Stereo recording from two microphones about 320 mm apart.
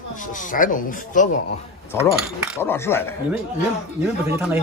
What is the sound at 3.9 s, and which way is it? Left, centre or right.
Speech, centre.